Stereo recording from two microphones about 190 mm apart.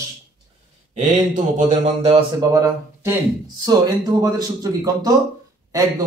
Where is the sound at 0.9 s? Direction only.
40° right (ahead or behind).